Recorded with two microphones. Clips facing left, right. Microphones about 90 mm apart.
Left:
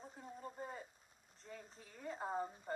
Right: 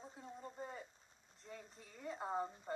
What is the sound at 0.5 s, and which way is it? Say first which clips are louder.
Speech: left 1 dB; 5° left (ahead or behind).